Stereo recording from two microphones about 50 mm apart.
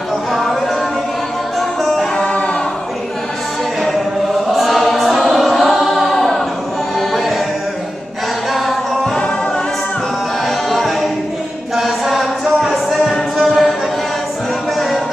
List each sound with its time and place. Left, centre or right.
0.3 s music: centre
1.8 s music: centre
2.1 s music: left
4.5 s choir: centre
7.0 s music: centre
10.7 s a capella: centre
11.7 s music: centre